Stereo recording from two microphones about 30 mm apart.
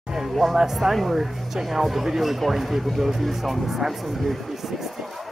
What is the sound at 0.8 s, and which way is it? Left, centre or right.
Speech, centre.